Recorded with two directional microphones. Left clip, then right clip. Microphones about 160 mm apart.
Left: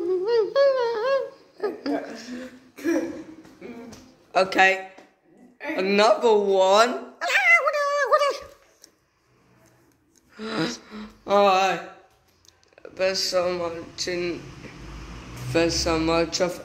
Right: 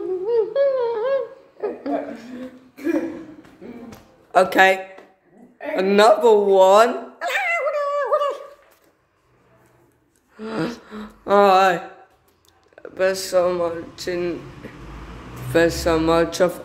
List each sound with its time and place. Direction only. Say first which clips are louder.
0.2 s humming: right 2 dB; 25° left (ahead or behind); by 2.5 s centre (ahead or behind)
4.3 s a man's voice: right 4 dB; 25° right (ahead or behind)
5.8 s a man's voice: right 5 dB; 25° right (ahead or behind)
7.2 s cat: left 6 dB; centre (ahead or behind)
7.6 s a sound: right 1 dB; 10° left (ahead or behind)
10.3 s a sound: right 1 dB; centre (ahead or behind)
10.7 s a sound: right 2 dB; 25° right (ahead or behind)
12.7 s a man's voice: right 4 dB; 25° right (ahead or behind)
15.5 s a man's voice: right 5 dB; 25° right (ahead or behind)